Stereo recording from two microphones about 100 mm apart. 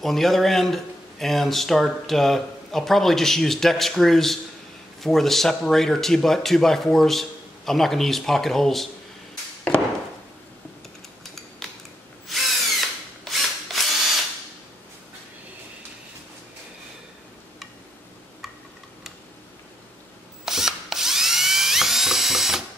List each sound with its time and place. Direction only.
0.0 s a man's voice: centre (ahead or behind)
13.2 s drill: centre (ahead or behind)
20.4 s drill: 5° right (ahead or behind)